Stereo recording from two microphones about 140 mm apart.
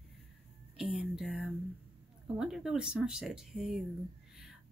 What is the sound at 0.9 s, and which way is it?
Speech, centre (ahead or behind).